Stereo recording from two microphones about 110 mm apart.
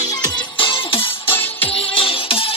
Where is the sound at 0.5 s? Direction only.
50° left (ahead or behind).